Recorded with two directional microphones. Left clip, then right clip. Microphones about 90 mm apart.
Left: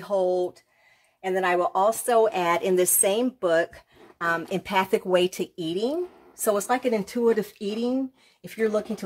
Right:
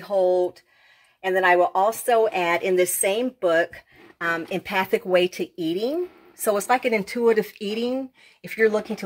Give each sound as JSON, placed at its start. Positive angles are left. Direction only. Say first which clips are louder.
{"t": 0.0, "sound": "a woman's voice", "louder": "right 4 dB", "side_deg": 20}
{"t": 5.6, "sound": "speech", "louder": "right 2 dB", "side_deg": 15}
{"t": 6.5, "sound": "speech", "louder": "right 3 dB", "side_deg": 5}
{"t": 8.4, "sound": "speech", "louder": "right 4 dB", "side_deg": 20}